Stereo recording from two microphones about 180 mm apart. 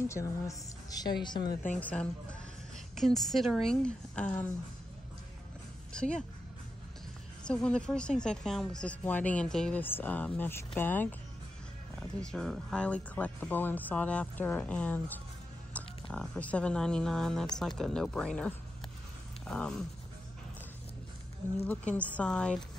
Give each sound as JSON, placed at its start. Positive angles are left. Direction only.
{"t": 0.1, "sound": "a woman's voice", "side_deg": 15}
{"t": 1.5, "sound": "speech", "side_deg": 45}
{"t": 1.8, "sound": "a woman's voice", "side_deg": 10}
{"t": 5.9, "sound": "a woman's voice", "side_deg": 5}
{"t": 7.4, "sound": "speech", "side_deg": 5}
{"t": 12.2, "sound": "a woman's voice", "side_deg": 5}
{"t": 21.9, "sound": "speech", "side_deg": 5}